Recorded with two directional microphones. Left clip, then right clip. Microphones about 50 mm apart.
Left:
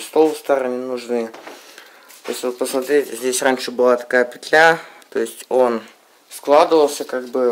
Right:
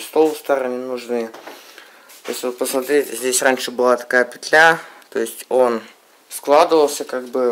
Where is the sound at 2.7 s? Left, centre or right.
Right.